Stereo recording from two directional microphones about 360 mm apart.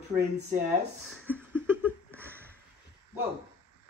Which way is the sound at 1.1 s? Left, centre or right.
Centre.